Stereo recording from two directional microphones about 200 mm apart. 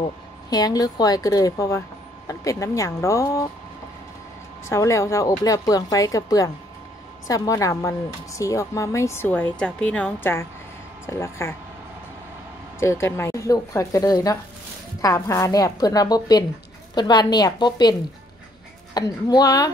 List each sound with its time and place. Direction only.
0.5 s a woman's voice: 20° left (ahead or behind)
4.6 s a woman's voice: 15° left (ahead or behind)
12.8 s a woman's voice: 15° left (ahead or behind)
18.9 s a woman's voice: 20° left (ahead or behind)